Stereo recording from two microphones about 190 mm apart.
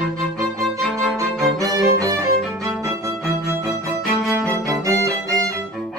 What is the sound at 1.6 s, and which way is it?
Music, 20° right (ahead or behind).